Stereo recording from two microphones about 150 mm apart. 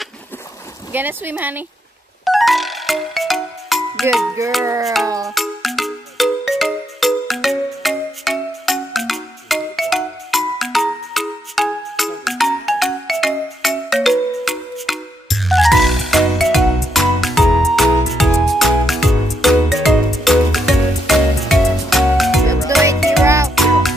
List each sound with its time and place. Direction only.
0.9 s speech: 15° right (ahead or behind)
2.2 s music: centre (ahead or behind)
4.4 s music: 20° right (ahead or behind)
5.3 s music: centre (ahead or behind)
23.2 s music: 20° right (ahead or behind)
23.5 s music: centre (ahead or behind)